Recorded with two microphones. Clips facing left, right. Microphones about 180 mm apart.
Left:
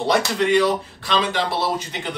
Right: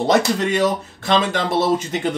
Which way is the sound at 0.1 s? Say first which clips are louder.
Even; 45° right (ahead or behind).